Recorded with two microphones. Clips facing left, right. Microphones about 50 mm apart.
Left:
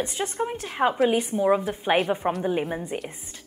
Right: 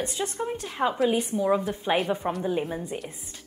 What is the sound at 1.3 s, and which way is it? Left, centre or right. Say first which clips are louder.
Speech: left 2 dB; left.